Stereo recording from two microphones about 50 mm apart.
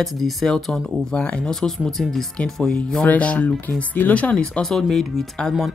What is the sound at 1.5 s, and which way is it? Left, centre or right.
Speech, centre.